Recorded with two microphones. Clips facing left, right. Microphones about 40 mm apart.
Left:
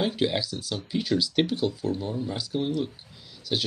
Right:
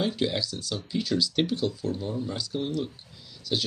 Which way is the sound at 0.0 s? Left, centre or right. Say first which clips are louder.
Left 2 dB; centre.